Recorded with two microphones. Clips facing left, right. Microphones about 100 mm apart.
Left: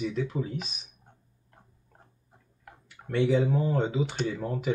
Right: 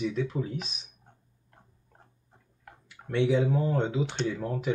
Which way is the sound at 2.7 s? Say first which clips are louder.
Even; centre (ahead or behind).